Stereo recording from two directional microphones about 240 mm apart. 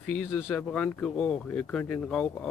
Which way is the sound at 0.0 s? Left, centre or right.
Centre.